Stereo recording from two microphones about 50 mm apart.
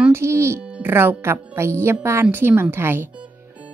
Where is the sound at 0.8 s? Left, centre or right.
Right.